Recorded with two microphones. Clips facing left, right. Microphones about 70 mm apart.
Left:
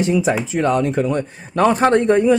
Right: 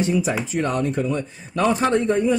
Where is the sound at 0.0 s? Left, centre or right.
Left.